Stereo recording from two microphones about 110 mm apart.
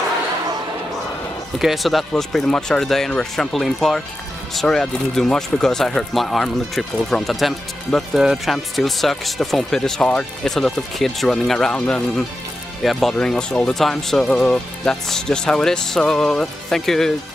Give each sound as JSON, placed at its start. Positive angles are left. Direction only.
{"t": 1.6, "sound": "speech", "side_deg": 0}